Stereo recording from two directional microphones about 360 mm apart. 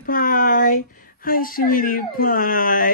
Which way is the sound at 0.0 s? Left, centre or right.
Left.